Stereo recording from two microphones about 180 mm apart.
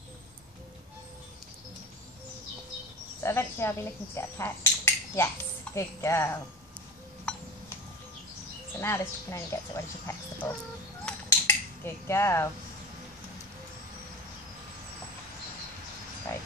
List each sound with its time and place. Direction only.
3.2 s speech: 15° left (ahead or behind)
7.3 s a sound: 5° left (ahead or behind)
8.7 s speech: 15° left (ahead or behind)
11.1 s cutlery: 10° left (ahead or behind)